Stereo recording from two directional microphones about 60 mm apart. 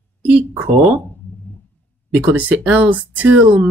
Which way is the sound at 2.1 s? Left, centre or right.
Right.